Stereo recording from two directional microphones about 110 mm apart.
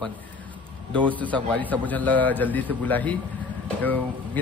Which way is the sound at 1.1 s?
15° left (ahead or behind).